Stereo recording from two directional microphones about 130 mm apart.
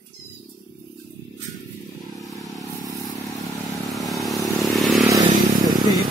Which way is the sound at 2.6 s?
30° left (ahead or behind).